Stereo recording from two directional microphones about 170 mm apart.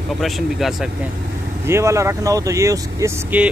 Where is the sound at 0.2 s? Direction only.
Centre (ahead or behind).